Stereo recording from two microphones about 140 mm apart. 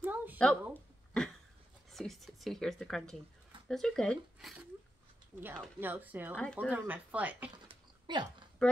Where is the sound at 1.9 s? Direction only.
Centre (ahead or behind).